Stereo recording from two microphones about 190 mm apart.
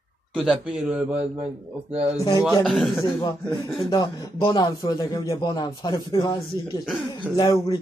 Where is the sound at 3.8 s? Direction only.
20° left (ahead or behind).